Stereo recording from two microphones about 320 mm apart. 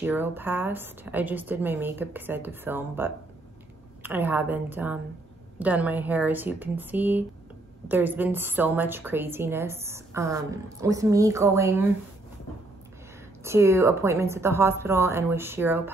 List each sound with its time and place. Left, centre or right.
0.0 s a woman's voice: centre
13.4 s a woman's voice: centre